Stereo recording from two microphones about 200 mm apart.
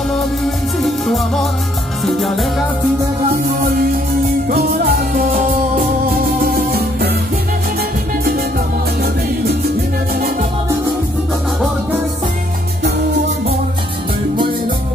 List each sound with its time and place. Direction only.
0.8 s music: centre (ahead or behind)
3.4 s music: 45° right (ahead or behind)
8.2 s music: 50° right (ahead or behind)